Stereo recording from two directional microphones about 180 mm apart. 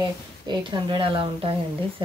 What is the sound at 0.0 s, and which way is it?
Speech, 25° right (ahead or behind).